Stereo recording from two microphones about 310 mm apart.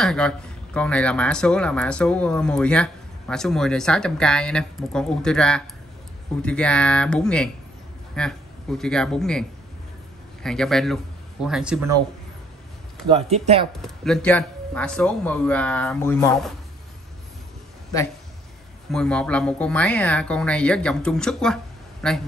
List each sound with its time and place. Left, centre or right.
0.0 s a man's voice: centre
13.1 s speech: centre
13.7 s a man's voice: centre
18.9 s a man's voice: centre